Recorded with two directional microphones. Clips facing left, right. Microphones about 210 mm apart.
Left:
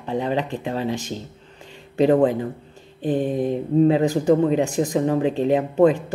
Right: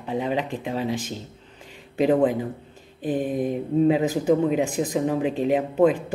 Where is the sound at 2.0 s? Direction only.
5° right (ahead or behind).